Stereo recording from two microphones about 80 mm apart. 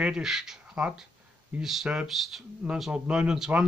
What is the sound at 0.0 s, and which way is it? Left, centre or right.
A man's voice, centre.